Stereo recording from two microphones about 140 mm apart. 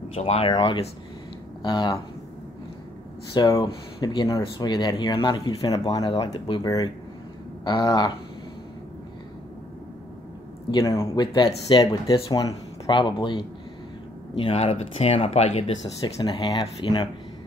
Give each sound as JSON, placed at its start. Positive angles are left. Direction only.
{"t": 0.1, "sound": "speech", "side_deg": 45}
{"t": 3.3, "sound": "speech", "side_deg": 30}
{"t": 10.7, "sound": "speech", "side_deg": 25}
{"t": 16.2, "sound": "speech", "side_deg": 30}